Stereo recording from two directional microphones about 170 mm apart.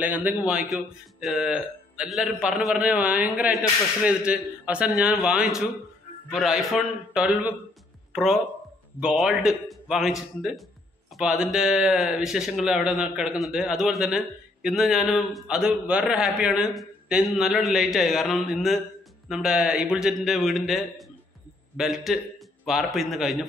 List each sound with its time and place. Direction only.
0.0 s speech: 10° right (ahead or behind)